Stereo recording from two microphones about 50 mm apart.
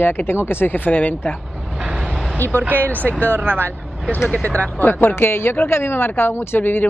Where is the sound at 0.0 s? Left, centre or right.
Left.